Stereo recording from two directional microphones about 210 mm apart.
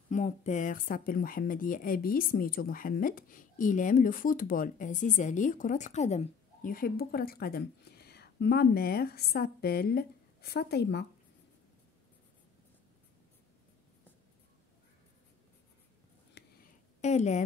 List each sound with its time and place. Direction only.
0.1 s speech: 35° left (ahead or behind); by 11.1 s 50° left (ahead or behind)
16.4 s a sound: 50° left (ahead or behind)
17.0 s speech: 35° left (ahead or behind)